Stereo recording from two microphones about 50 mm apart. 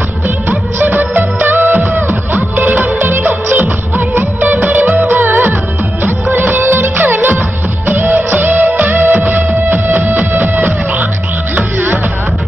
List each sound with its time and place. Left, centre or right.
0.5 s music of bollywood: right
2.0 s music: right